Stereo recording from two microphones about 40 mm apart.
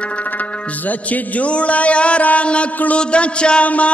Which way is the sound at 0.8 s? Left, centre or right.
Left.